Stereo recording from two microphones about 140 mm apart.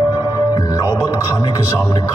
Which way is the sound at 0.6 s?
25° left (ahead or behind).